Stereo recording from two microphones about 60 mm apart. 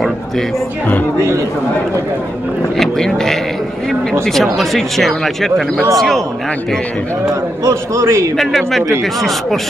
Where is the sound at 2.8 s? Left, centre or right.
Centre.